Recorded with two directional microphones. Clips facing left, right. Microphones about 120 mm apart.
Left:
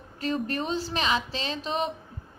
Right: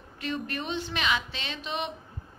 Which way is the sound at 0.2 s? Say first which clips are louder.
Left 4 dB; 35° left (ahead or behind).